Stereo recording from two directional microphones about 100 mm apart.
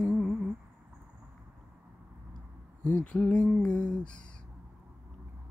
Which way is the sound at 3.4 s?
Centre (ahead or behind).